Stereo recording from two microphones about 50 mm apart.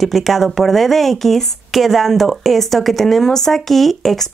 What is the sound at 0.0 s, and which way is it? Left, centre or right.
Speech, centre.